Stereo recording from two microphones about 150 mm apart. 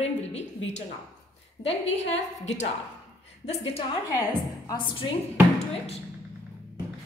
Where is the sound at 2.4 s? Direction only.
50° left (ahead or behind).